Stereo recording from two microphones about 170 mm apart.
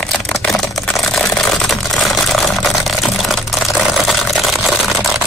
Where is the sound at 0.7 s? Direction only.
Centre (ahead or behind).